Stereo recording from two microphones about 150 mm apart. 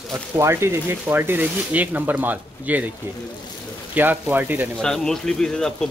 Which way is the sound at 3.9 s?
10° right (ahead or behind).